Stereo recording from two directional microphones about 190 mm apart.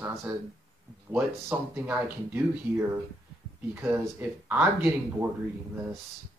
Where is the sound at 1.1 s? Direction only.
10° right (ahead or behind).